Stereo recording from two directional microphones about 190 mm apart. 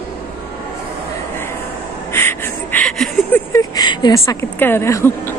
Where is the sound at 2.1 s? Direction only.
10° left (ahead or behind).